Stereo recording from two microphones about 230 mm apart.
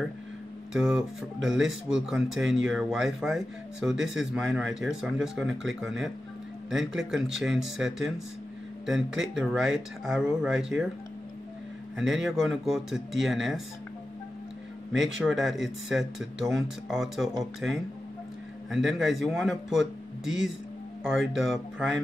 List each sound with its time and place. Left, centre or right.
0.7 s speech: centre
12.0 s speech: centre
15.0 s speech: centre